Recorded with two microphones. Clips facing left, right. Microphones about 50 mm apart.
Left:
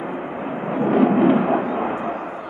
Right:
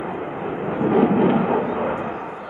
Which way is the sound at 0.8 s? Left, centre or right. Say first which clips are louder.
Left 1 dB; centre.